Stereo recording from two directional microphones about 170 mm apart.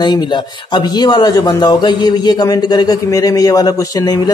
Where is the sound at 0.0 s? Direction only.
25° left (ahead or behind).